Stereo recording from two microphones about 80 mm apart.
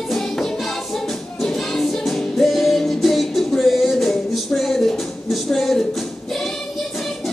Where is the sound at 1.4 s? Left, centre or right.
Centre.